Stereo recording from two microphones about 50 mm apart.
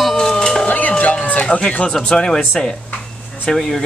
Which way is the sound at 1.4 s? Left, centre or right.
Left.